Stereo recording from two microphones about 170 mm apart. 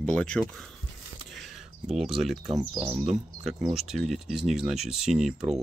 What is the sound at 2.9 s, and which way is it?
Speech, 40° right (ahead or behind).